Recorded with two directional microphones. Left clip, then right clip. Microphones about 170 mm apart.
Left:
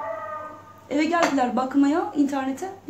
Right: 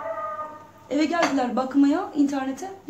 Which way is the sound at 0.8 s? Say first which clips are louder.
Left 1 dB; 15° left (ahead or behind).